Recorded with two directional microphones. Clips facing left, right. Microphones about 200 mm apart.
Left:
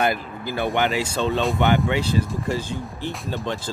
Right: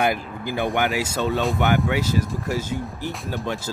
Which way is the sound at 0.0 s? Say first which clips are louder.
Even; 15° right (ahead or behind).